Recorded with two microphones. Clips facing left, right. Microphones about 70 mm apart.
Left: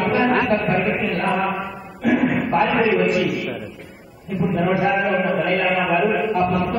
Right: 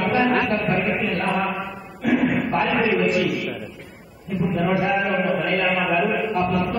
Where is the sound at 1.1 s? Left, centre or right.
Centre.